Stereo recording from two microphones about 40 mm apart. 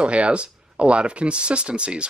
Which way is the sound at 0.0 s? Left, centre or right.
Right.